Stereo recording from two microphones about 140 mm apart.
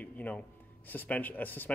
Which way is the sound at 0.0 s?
10° left (ahead or behind).